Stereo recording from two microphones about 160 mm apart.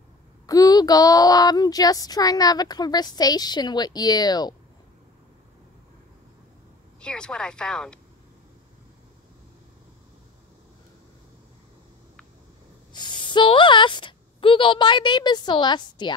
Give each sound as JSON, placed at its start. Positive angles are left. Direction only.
{"t": 0.5, "sound": "child singing", "side_deg": 25}
{"t": 7.0, "sound": "speech", "side_deg": 5}
{"t": 12.9, "sound": "a woman's voice", "side_deg": 30}